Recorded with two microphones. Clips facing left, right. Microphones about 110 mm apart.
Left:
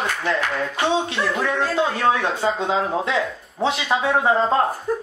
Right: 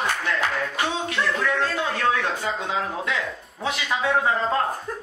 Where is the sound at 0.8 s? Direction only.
25° left (ahead or behind).